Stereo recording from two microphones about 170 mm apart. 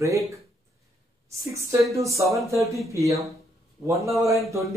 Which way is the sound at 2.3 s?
15° right (ahead or behind).